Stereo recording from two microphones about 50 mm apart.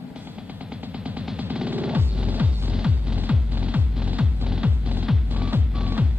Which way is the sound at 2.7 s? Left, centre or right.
Centre.